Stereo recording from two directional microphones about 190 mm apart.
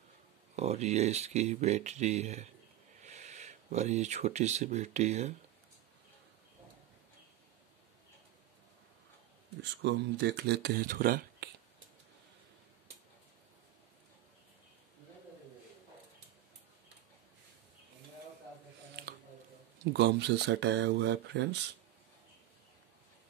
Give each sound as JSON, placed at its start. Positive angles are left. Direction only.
{"t": 0.6, "sound": "speech", "side_deg": -35}
{"t": 9.8, "sound": "speech", "side_deg": -65}
{"t": 19.0, "sound": "a sound", "side_deg": -60}
{"t": 19.8, "sound": "speech", "side_deg": -60}